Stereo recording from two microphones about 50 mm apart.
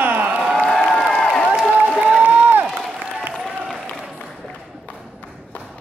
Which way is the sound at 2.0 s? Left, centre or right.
Right.